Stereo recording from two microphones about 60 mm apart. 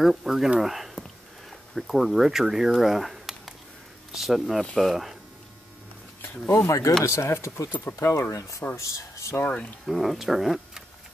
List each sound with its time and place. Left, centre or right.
0.0 s speech: centre
6.5 s speech: left
8.7 s speech: left
9.4 s speech: centre
9.8 s speech: centre